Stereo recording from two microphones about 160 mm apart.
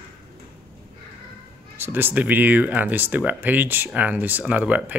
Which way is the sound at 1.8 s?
10° right (ahead or behind).